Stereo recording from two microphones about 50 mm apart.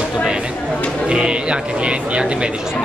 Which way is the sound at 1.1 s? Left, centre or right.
Centre.